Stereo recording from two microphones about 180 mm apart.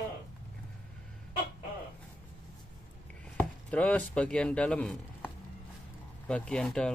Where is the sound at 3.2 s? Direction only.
5° left (ahead or behind).